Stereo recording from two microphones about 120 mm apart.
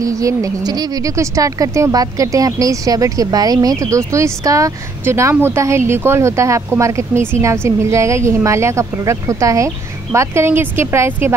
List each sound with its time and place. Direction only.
0.0 s speech: 30° right (ahead or behind)